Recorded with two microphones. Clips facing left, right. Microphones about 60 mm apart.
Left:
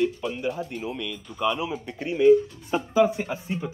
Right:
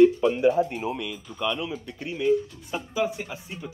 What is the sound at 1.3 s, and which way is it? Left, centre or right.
Speech, centre.